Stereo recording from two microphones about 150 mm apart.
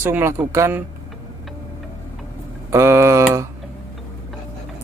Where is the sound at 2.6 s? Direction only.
20° right (ahead or behind).